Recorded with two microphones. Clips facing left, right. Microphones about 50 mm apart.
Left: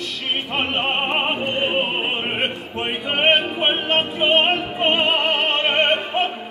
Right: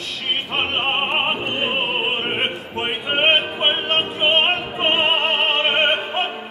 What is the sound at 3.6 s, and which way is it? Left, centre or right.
Opera, right.